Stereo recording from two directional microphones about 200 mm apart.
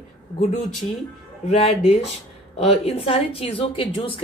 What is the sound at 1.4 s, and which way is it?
A woman's voice, 30° left (ahead or behind).